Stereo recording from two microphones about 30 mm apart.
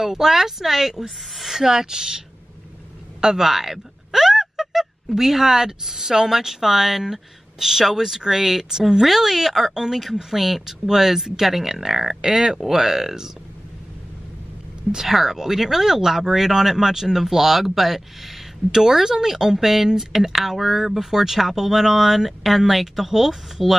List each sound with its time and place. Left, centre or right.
0.0 s speech: centre
1.6 s speech: centre
3.4 s speech: centre
15.0 s speech: centre